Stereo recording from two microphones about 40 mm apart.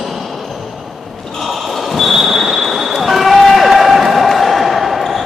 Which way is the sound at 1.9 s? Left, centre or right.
Centre.